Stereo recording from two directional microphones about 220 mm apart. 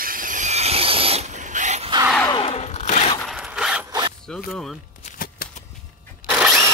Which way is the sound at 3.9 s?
20° right (ahead or behind).